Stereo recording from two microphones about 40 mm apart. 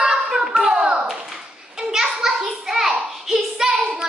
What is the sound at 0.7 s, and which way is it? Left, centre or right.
Clapping, right.